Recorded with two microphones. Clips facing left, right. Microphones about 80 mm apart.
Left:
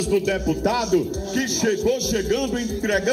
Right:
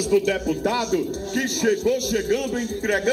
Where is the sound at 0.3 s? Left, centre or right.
Centre.